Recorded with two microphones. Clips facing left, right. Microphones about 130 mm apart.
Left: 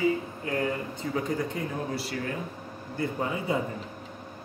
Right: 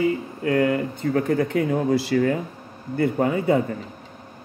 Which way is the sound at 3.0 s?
60° right (ahead or behind).